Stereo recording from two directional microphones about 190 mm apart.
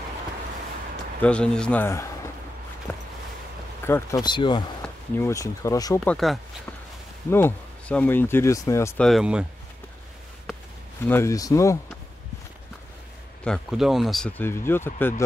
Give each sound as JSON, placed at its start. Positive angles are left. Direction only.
{"t": 1.2, "sound": "speech", "side_deg": 5}
{"t": 2.9, "sound": "a sound", "side_deg": 10}
{"t": 3.8, "sound": "speech", "side_deg": 15}
{"t": 4.8, "sound": "speech", "side_deg": 10}
{"t": 5.9, "sound": "speech", "side_deg": 5}
{"t": 7.2, "sound": "speech", "side_deg": 10}
{"t": 9.0, "sound": "speech", "side_deg": 0}
{"t": 11.1, "sound": "speech", "side_deg": 15}
{"t": 13.4, "sound": "speech", "side_deg": 0}